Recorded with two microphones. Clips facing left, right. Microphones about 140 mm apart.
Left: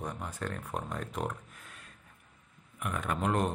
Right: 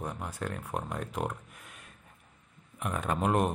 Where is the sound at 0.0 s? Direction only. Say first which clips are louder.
Right 1 dB; 5° right (ahead or behind).